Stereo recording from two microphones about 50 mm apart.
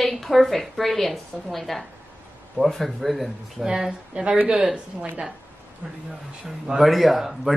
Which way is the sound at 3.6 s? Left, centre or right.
Centre.